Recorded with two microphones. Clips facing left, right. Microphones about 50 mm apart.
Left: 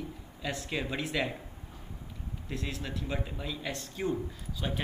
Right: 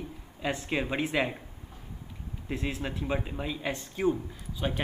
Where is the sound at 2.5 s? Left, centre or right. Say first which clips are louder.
Right 4 dB; right.